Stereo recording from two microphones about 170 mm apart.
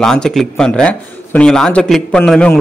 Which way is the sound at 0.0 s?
5° left (ahead or behind).